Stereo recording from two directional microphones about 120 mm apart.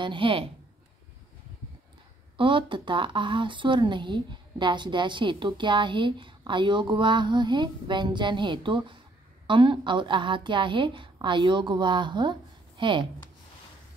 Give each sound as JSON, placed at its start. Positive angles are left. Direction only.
{"t": 0.0, "sound": "a woman's voice", "side_deg": -45}
{"t": 2.3, "sound": "speech", "side_deg": -45}